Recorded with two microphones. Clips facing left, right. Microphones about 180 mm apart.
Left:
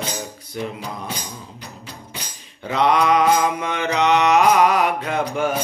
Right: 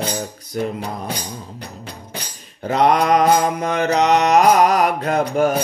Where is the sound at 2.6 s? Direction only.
45° right (ahead or behind).